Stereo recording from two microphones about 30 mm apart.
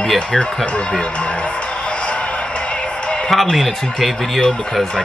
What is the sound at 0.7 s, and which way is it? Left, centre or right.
Speech, left.